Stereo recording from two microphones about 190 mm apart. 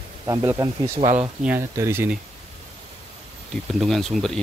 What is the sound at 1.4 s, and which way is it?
Speech, 15° right (ahead or behind).